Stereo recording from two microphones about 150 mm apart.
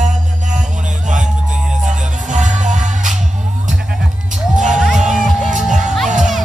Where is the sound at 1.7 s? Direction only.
55° right (ahead or behind).